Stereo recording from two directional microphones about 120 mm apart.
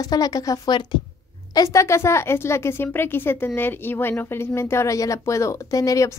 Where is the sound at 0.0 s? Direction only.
30° left (ahead or behind).